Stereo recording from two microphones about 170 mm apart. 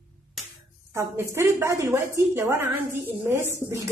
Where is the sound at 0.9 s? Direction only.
15° right (ahead or behind).